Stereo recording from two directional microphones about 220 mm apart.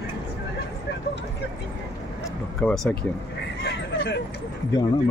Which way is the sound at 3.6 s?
50° left (ahead or behind).